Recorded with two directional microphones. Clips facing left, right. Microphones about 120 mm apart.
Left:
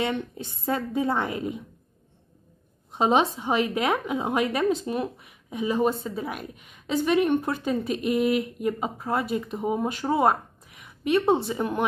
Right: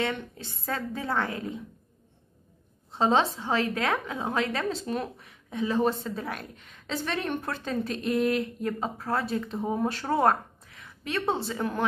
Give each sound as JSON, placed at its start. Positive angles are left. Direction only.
{"t": 0.0, "sound": "a woman's voice", "side_deg": 20}
{"t": 2.9, "sound": "a woman's voice", "side_deg": 15}
{"t": 10.8, "sound": "a woman's voice", "side_deg": 20}